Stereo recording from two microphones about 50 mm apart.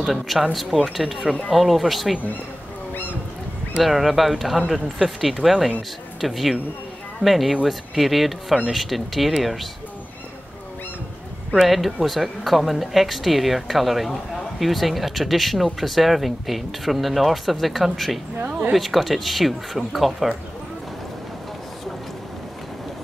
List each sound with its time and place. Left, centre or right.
0.0 s speech: centre
3.8 s speech: centre
11.6 s speech: centre
18.4 s a sound: right
18.7 s speech: centre